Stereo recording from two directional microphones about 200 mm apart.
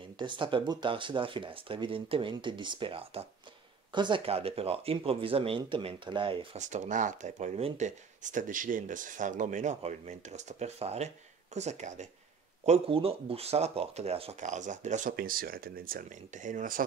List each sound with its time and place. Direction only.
0.2 s speech: 25° right (ahead or behind); by 16.8 s 40° right (ahead or behind)